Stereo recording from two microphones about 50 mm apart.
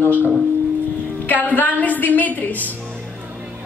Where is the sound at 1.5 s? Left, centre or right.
Left.